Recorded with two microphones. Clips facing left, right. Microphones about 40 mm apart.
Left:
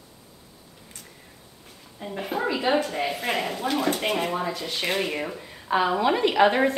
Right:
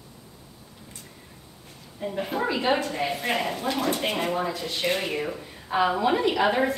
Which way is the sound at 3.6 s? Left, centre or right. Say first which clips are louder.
Left 1 dB; left.